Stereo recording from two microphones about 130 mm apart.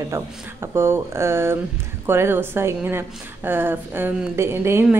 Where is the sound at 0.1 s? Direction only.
20° right (ahead or behind).